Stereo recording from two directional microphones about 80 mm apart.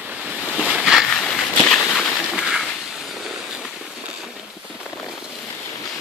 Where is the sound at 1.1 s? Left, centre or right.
Centre.